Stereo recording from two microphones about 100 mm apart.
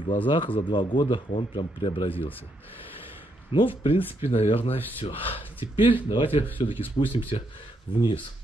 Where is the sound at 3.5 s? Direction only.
60° left (ahead or behind).